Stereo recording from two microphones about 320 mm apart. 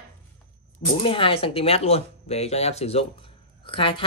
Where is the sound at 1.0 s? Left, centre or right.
Centre.